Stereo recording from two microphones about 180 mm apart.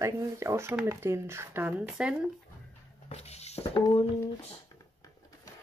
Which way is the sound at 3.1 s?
35° left (ahead or behind).